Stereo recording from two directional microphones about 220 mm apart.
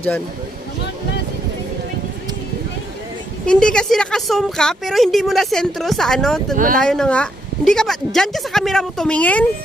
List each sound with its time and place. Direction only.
3.4 s speech: 5° left (ahead or behind)
6.5 s speech: 35° right (ahead or behind)
6.8 s speech: 5° left (ahead or behind)